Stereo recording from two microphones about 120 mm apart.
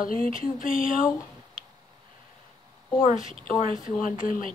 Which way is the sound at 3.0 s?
90° left.